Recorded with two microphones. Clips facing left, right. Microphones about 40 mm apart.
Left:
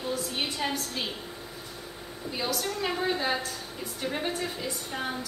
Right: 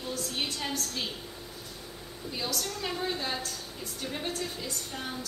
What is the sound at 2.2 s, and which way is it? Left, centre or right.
A woman's voice, centre.